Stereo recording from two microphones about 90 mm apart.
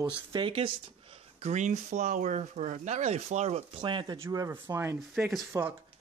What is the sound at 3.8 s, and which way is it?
Speech, 65° right (ahead or behind).